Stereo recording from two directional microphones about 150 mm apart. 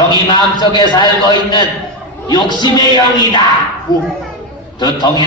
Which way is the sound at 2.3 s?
30° left (ahead or behind).